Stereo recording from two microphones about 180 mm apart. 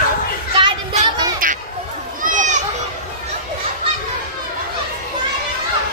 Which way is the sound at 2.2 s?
45° right (ahead or behind).